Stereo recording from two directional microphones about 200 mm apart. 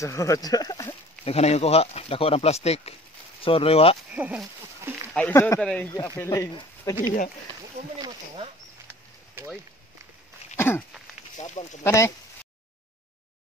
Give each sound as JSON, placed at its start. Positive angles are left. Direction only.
{"t": 0.0, "sound": "speech", "side_deg": 15}
{"t": 1.2, "sound": "speech", "side_deg": 30}
{"t": 4.1, "sound": "a sound", "side_deg": -5}
{"t": 5.1, "sound": "speech", "side_deg": 10}
{"t": 9.3, "sound": "a sound", "side_deg": -10}
{"t": 11.3, "sound": "speech", "side_deg": 35}
{"t": 11.8, "sound": "speech", "side_deg": 15}